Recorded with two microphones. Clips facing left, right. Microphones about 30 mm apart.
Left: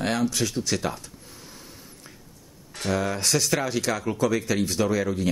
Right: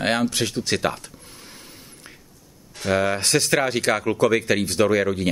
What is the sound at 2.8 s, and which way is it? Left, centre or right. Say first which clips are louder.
Speech: right 4 dB; right.